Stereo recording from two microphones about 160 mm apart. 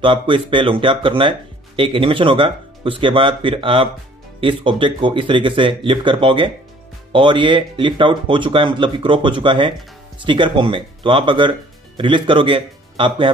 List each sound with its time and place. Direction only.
0.0 s speech: 30° right (ahead or behind)